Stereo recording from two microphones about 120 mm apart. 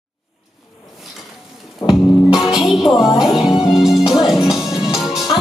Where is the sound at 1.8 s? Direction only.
35° left (ahead or behind).